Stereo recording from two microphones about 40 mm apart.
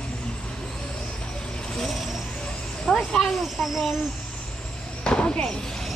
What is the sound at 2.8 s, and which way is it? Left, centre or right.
Snake, centre.